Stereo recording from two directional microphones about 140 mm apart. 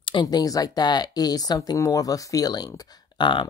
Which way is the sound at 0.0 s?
35° left (ahead or behind).